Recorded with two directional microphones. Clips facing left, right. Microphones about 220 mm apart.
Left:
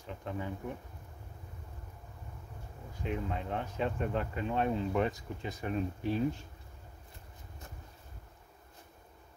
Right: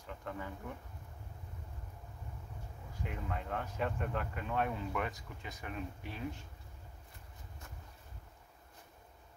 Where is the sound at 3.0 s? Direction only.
20° left (ahead or behind).